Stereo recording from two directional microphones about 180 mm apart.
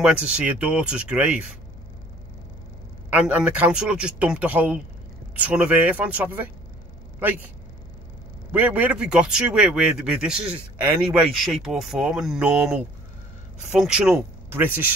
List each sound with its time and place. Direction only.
0.0 s a man's voice: 5° right (ahead or behind)
3.1 s a man's voice: 10° right (ahead or behind)
8.5 s a man's voice: 10° right (ahead or behind)